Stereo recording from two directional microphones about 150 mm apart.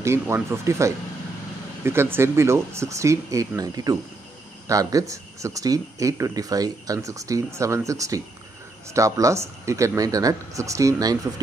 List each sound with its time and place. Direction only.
0.0 s speech: 20° right (ahead or behind)